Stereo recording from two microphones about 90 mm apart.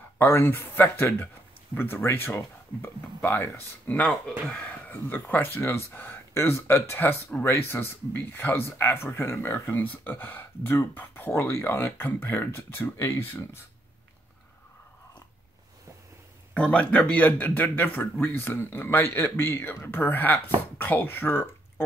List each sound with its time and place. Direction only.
0.2 s speech: 25° left (ahead or behind)
16.5 s speech: 15° left (ahead or behind)